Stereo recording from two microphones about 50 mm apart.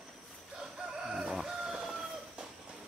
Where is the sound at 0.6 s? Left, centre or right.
Centre.